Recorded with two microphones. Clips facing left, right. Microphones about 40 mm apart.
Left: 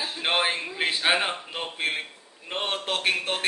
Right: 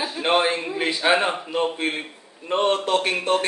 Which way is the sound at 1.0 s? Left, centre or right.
Centre.